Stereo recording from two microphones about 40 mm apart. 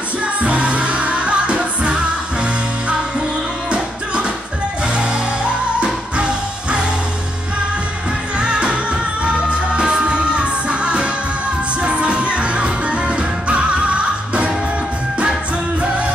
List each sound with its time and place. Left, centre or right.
0.2 s music: right
3.7 s music: right
8.4 s music: right